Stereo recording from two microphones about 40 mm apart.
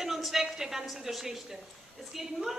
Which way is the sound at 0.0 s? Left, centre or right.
Centre.